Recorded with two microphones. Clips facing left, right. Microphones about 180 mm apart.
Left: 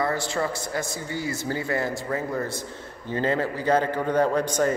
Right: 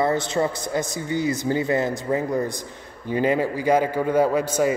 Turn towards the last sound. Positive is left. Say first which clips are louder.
# right 2 dB
turn(degrees=-10)  # may be behind; listen again after turning